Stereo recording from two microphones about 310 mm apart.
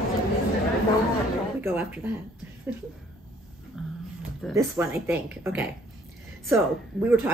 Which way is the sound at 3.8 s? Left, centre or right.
Centre.